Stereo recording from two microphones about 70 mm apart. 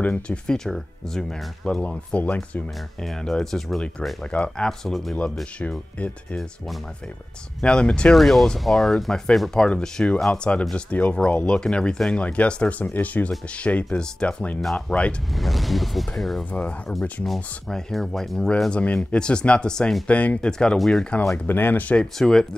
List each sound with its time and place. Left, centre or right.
0.0 s speech: left
0.5 s speech: centre
3.0 s speech: centre
4.3 s speech: centre
4.6 s speech: centre
7.6 s speech: centre
8.1 s speech: centre
15.3 s speech: centre
18.7 s speech: centre
21.5 s speech: left
22.2 s speech: centre